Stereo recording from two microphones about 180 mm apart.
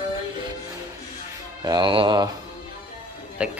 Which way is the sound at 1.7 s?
25° right (ahead or behind).